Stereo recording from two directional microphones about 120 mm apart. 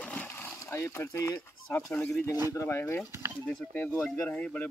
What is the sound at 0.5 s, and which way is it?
Speech, 20° left (ahead or behind).